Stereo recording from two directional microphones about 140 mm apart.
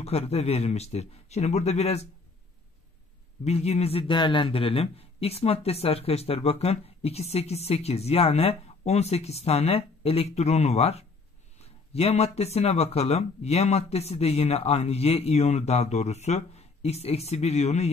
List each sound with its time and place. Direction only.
0.0 s a man's voice: 50° left (ahead or behind)
3.4 s a man's voice: 50° left (ahead or behind)